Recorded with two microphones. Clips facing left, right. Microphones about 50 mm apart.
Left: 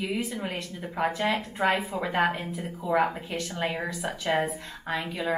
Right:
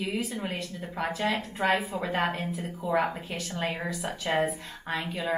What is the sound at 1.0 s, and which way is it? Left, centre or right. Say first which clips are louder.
A woman's voice: left 2 dB; centre.